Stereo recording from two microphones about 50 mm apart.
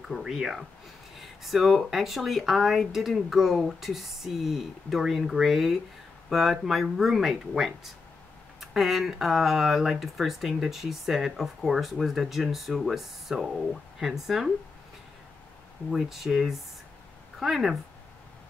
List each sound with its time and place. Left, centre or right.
0.1 s speech: centre
15.9 s speech: centre